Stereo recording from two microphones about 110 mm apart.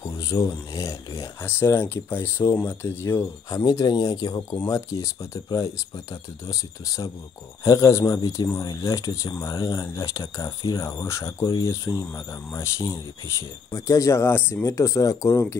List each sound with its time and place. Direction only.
0.0 s speech: 25° left (ahead or behind)